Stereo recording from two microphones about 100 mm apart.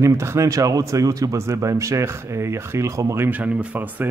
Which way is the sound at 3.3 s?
15° right (ahead or behind).